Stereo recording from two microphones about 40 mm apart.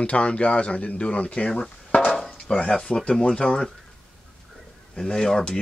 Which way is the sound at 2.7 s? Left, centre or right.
Left.